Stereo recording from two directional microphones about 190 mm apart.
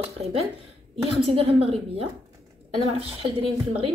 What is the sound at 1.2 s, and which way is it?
A woman's voice, 30° right (ahead or behind).